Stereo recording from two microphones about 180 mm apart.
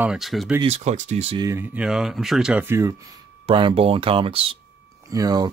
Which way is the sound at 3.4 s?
30° right (ahead or behind).